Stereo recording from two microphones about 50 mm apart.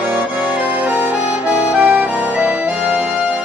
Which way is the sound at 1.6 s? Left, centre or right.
Right.